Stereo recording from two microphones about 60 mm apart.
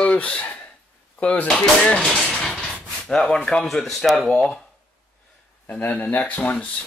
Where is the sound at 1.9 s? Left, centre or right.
Centre.